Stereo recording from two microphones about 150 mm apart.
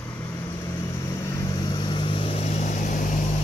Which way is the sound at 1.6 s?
30° left (ahead or behind).